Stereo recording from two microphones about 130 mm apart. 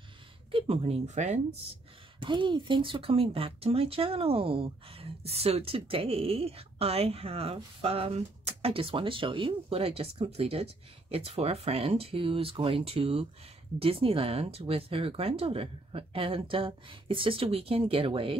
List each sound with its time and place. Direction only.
0.5 s speech: 45° right (ahead or behind)
2.2 s speech: 35° right (ahead or behind)